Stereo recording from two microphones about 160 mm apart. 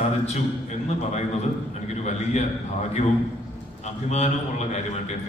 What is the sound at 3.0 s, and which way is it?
A man's voice, 45° left (ahead or behind).